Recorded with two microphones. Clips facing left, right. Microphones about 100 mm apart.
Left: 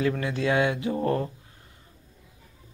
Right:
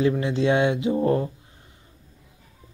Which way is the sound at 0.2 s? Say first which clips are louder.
Right 4 dB; 25° right (ahead or behind).